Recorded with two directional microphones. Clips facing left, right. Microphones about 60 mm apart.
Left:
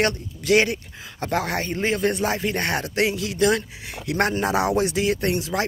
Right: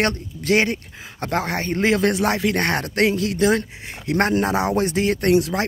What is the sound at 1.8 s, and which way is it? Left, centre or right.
Speech, right.